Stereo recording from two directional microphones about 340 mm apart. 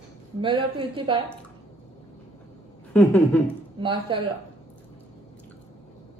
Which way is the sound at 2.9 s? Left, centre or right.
Centre.